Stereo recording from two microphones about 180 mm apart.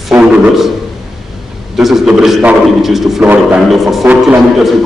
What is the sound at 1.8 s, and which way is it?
A man's voice, centre (ahead or behind).